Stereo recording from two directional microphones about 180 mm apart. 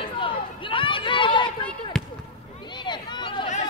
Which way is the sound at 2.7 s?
25° left (ahead or behind).